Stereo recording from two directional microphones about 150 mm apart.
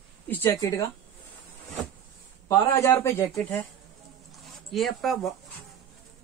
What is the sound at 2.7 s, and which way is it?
Speech, 20° left (ahead or behind).